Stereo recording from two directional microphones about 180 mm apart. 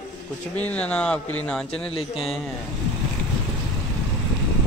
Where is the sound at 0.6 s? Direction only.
10° left (ahead or behind).